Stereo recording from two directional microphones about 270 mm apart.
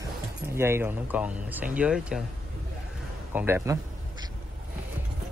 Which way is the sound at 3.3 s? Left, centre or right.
Centre.